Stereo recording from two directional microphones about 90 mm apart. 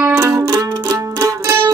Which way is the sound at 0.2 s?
35° right (ahead or behind).